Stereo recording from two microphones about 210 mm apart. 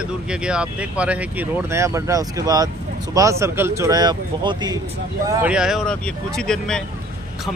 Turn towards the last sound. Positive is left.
turn(degrees=5)  # may be behind; listen again after turning